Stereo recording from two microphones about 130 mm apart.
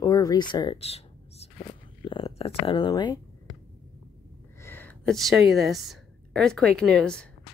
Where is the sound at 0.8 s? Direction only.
50° left (ahead or behind).